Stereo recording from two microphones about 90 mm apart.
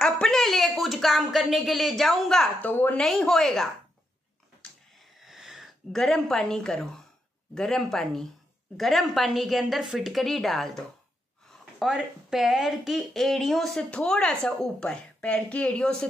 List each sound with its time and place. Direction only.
0.0 s speech: 5° left (ahead or behind)
2.6 s a woman's voice: 20° left (ahead or behind)
3.0 s a woman's voice: 5° left (ahead or behind)
5.2 s wheeze: 5° right (ahead or behind)
5.9 s a woman's voice: 5° left (ahead or behind)
11.8 s a woman's voice: 5° right (ahead or behind)